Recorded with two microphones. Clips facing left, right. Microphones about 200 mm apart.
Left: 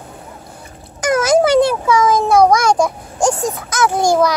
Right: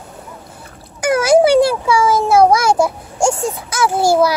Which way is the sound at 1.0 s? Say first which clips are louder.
Right 2 dB; 10° right (ahead or behind).